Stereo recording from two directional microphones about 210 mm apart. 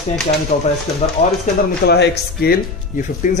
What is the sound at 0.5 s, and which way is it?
Speech, 35° left (ahead or behind).